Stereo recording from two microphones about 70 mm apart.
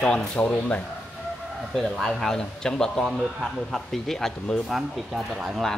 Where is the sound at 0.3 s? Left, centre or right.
Centre.